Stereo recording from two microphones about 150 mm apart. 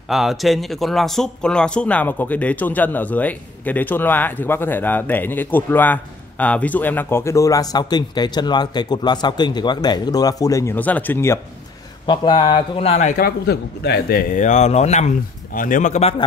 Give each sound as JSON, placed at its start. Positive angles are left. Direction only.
{"t": 0.1, "sound": "speech", "side_deg": 0}
{"t": 12.1, "sound": "speech", "side_deg": 30}
{"t": 13.2, "sound": "a man's voice", "side_deg": 90}
{"t": 14.4, "sound": "speech", "side_deg": 50}